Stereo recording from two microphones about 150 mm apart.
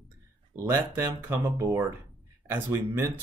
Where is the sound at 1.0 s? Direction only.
15° right (ahead or behind).